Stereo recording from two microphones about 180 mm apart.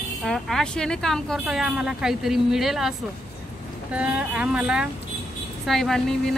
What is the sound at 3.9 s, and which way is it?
Speech, 5° right (ahead or behind).